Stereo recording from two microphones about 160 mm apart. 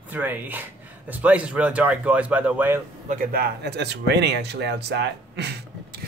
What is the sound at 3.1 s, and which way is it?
Speech, 65° right (ahead or behind).